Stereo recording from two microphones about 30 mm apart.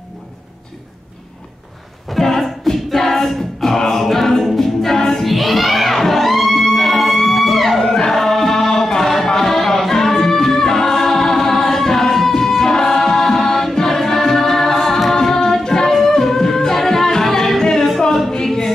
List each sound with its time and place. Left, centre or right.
2.0 s a sound: centre
2.9 s a capella: centre
5.2 s music: centre
7.8 s music: centre
8.1 s music: centre
12.6 s music: centre
13.7 s a capella: centre
15.6 s singing: centre
16.3 s music: centre
18.3 s a capella: centre